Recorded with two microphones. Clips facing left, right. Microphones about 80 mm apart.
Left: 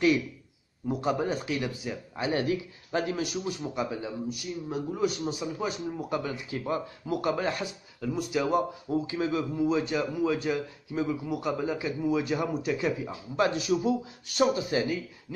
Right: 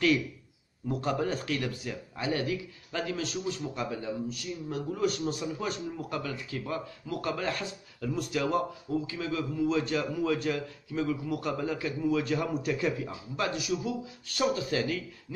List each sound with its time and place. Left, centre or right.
0.8 s a man's voice: centre
2.1 s speech: centre
3.2 s a man's voice: centre
8.9 s a man's voice: left; by 10.6 s centre
10.9 s a man's voice: centre
13.4 s speech: left